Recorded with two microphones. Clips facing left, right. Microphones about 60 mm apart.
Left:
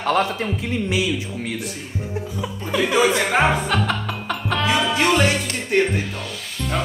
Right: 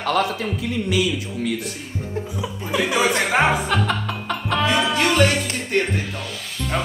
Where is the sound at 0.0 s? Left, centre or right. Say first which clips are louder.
Left 1 dB; left.